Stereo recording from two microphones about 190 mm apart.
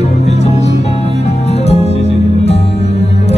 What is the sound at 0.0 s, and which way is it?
Music, 35° left (ahead or behind).